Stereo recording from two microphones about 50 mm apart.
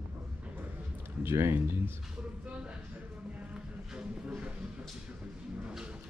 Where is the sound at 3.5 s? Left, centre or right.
Right.